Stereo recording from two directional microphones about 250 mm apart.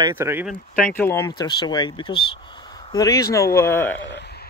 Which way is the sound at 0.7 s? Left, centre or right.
Centre.